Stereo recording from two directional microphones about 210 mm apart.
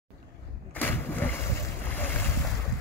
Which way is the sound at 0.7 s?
10° left (ahead or behind).